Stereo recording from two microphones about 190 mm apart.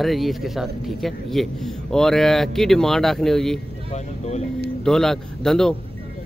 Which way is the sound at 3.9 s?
35° left (ahead or behind).